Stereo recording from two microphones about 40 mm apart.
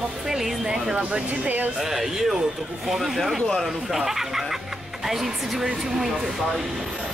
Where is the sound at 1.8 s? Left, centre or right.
Centre.